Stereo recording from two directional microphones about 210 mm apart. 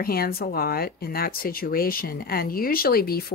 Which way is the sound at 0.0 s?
45° left (ahead or behind).